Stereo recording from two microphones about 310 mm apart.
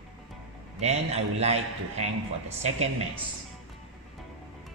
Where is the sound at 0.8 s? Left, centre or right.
Right.